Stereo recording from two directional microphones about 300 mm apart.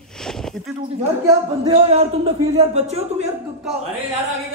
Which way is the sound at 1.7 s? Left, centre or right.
Centre.